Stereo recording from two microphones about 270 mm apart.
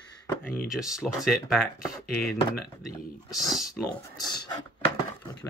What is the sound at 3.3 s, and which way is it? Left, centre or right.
Speech, centre.